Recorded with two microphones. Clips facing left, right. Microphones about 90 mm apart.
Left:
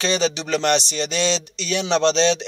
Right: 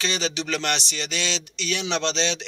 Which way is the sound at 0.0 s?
30° left (ahead or behind).